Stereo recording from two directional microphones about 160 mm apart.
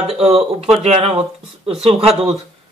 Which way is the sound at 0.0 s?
40° right (ahead or behind).